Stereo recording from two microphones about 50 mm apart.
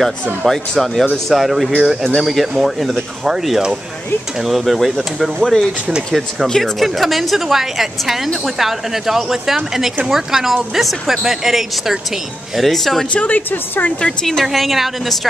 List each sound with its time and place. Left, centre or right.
0.0 s a woman's voice: centre
13.1 s a woman's voice: left
13.5 s speech: left
14.2 s a woman's voice: centre